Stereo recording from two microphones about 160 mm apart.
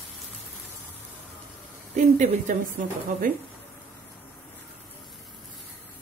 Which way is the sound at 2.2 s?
55° right (ahead or behind).